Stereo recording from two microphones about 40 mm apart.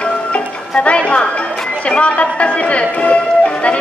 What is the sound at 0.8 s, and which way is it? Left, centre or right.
Speech, left.